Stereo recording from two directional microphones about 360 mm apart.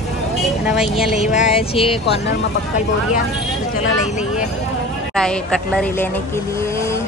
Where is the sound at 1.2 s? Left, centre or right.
Centre.